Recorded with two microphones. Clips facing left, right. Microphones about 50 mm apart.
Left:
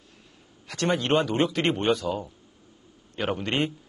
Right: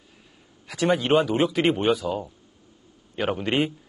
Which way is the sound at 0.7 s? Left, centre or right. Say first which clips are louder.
Right 3 dB; centre.